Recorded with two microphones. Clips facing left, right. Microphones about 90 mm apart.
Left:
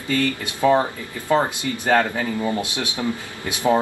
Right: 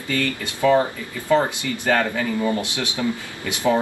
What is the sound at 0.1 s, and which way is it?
Speech, 25° left (ahead or behind).